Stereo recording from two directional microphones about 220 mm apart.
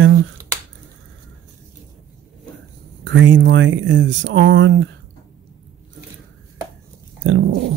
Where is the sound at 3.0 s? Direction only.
55° right (ahead or behind).